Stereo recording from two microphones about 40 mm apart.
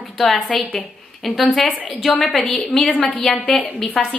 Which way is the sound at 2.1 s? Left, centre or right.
Left.